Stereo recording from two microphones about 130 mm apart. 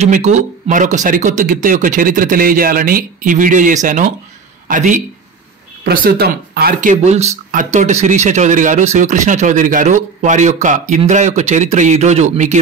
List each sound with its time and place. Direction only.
0.1 s a man's voice: 75° right (ahead or behind)
6.8 s speech: 75° right (ahead or behind)